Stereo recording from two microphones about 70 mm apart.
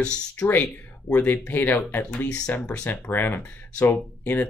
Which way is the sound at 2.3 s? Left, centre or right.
Centre.